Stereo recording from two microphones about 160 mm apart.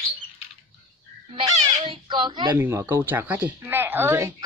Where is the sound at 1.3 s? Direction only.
25° right (ahead or behind).